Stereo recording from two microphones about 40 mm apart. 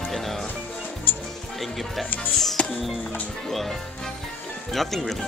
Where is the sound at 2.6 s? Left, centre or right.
Left.